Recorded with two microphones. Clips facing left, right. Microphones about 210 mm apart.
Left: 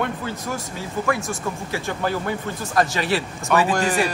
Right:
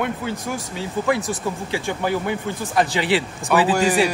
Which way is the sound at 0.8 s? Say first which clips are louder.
Right 3 dB; 20° right (ahead or behind).